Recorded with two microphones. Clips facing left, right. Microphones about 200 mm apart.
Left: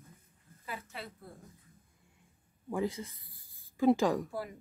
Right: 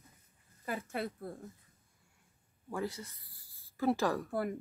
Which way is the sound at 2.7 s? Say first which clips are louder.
Left 4 dB; 15° left (ahead or behind).